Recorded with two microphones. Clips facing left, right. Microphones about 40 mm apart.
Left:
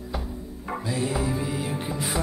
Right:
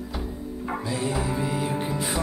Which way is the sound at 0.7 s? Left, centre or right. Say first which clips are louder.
Left 1 dB; centre.